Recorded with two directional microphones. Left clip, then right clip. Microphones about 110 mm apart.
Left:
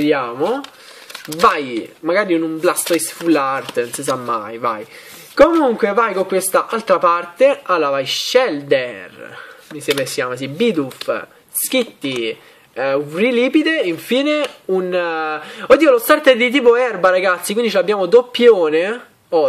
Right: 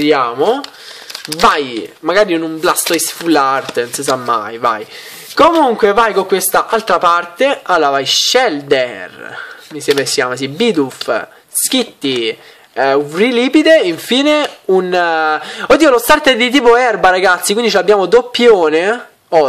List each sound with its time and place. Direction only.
0.0 s speech: 30° right (ahead or behind)